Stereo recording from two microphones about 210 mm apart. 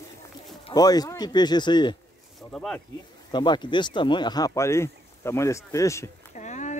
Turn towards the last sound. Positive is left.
turn(degrees=35)  # may be behind; listen again after turning